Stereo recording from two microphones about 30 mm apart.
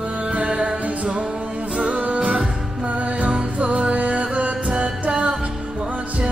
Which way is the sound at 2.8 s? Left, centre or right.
Right.